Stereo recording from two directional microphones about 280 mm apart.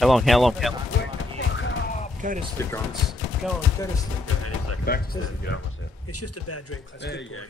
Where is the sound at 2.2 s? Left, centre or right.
Right.